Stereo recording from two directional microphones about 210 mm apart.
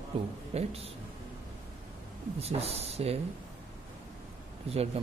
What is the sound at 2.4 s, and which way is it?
Speech, 30° right (ahead or behind).